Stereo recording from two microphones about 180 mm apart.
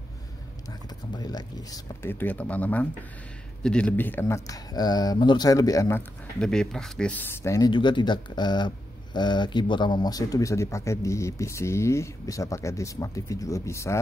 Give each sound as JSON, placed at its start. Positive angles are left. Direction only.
{"t": 0.7, "sound": "speech", "side_deg": 20}